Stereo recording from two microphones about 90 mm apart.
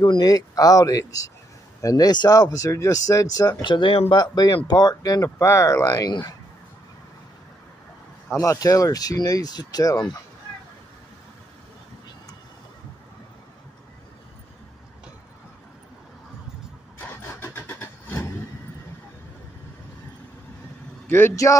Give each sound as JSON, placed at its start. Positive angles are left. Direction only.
{"t": 0.0, "sound": "speech", "side_deg": 45}
{"t": 3.6, "sound": "speech", "side_deg": 65}
{"t": 8.3, "sound": "speech", "side_deg": 35}
{"t": 17.0, "sound": "vehicle", "side_deg": 25}
{"t": 21.1, "sound": "speech", "side_deg": 30}